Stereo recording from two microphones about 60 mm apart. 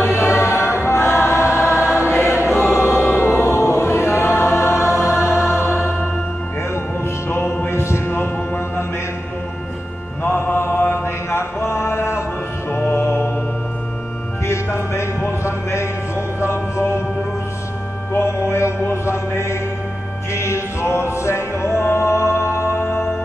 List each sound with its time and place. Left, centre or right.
0.0 s choir: left
5.6 s music: left
7.2 s music: left
10.2 s mantra: left
12.7 s music: left
14.4 s music: left
18.1 s mantra: left
20.3 s music: left